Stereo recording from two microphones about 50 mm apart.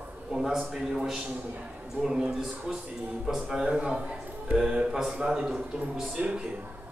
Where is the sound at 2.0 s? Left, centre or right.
Right.